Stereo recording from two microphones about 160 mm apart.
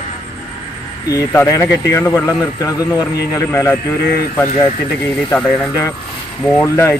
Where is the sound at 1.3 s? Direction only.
15° left (ahead or behind).